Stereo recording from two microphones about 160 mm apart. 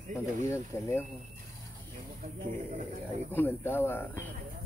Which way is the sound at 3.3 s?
15° left (ahead or behind).